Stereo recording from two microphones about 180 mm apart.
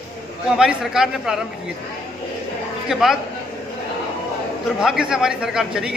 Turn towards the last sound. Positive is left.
turn(degrees=-5)  # may be behind; listen again after turning